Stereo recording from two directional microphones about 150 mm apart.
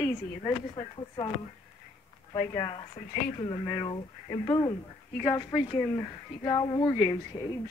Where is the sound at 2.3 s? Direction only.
30° left (ahead or behind).